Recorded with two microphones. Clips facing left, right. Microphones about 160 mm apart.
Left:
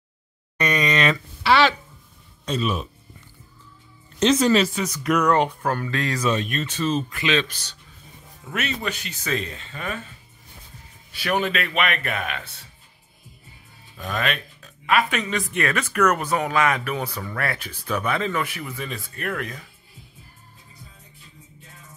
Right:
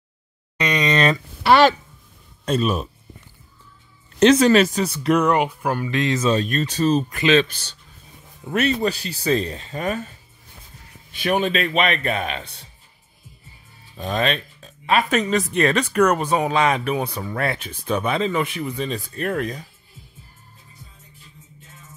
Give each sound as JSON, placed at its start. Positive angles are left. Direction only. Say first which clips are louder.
{"t": 0.6, "sound": "speech", "louder": "right 1 dB", "side_deg": -15}
{"t": 0.8, "sound": "a sound", "louder": "right 4 dB", "side_deg": -35}
{"t": 1.4, "sound": "a sound", "louder": "right 4 dB", "side_deg": -45}
{"t": 2.4, "sound": "speech", "louder": "right 4 dB", "side_deg": -45}
{"t": 4.2, "sound": "speech", "louder": "right 4 dB", "side_deg": -65}
{"t": 4.7, "sound": "speech", "louder": "right 3 dB", "side_deg": -30}
{"t": 5.3, "sound": "speech", "louder": "even", "side_deg": -10}
{"t": 11.1, "sound": "speech", "louder": "right 3 dB", "side_deg": -20}
{"t": 13.9, "sound": "speech", "louder": "right 4 dB", "side_deg": -25}
{"t": 15.0, "sound": "speech", "louder": "right 6 dB", "side_deg": -40}
{"t": 18.9, "sound": "speech", "louder": "right 5 dB", "side_deg": -30}